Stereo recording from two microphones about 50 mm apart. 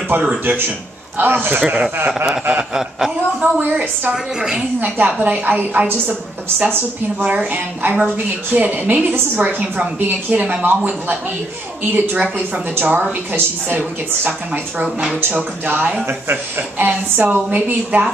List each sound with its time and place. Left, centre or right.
0.1 s a woman's voice: right
2.5 s chuckle: centre
3.3 s a woman's voice: right
4.1 s a woman's voice: centre
4.7 s a woman's voice: right
7.2 s a woman's voice: right
11.9 s a woman's voice: right